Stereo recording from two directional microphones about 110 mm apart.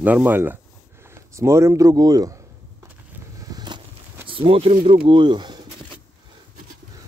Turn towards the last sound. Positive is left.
turn(degrees=-45)  # may be behind; listen again after turning